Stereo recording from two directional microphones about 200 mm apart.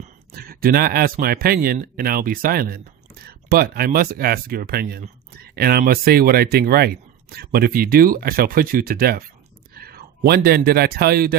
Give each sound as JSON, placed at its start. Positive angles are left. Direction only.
{"t": 0.3, "sound": "speech", "side_deg": -50}